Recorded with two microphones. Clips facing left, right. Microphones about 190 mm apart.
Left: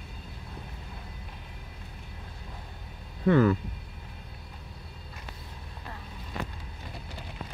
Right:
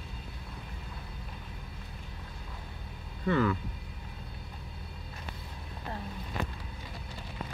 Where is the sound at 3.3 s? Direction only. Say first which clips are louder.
Left 6 dB; 45° left (ahead or behind).